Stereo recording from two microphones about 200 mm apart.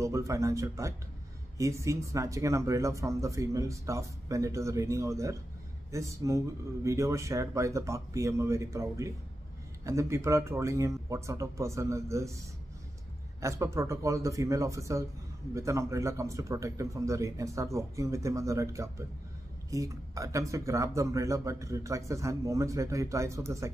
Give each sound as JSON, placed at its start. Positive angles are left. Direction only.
{"t": 0.0, "sound": "speech", "side_deg": -15}
{"t": 13.4, "sound": "speech", "side_deg": -15}